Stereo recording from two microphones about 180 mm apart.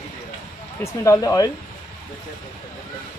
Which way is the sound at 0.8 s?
15° left (ahead or behind).